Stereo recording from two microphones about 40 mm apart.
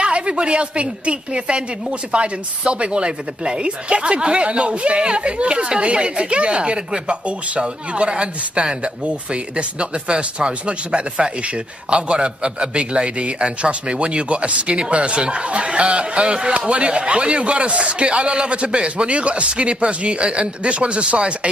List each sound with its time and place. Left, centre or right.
0.0 s a woman's voice: right